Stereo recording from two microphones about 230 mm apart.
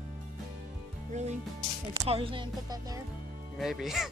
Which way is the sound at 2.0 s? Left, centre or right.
Right.